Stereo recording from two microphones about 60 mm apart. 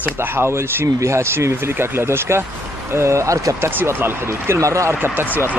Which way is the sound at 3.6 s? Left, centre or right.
Right.